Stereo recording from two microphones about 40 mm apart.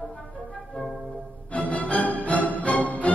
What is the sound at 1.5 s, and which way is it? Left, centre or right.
Music, left.